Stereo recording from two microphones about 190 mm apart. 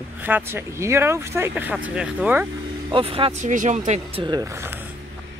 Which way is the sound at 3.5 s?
40° right (ahead or behind).